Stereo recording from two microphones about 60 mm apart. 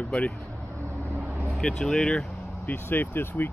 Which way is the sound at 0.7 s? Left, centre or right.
Right.